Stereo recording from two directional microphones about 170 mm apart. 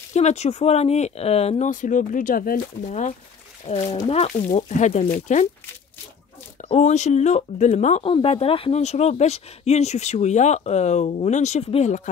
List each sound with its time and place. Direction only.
0.1 s speech: 40° left (ahead or behind); by 2.6 s 55° left (ahead or behind)
2.9 s speech: 40° left (ahead or behind)
6.6 s speech: 45° left (ahead or behind)